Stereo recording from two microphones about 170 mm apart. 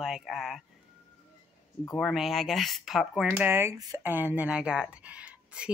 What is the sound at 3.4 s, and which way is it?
A woman's voice, 15° right (ahead or behind).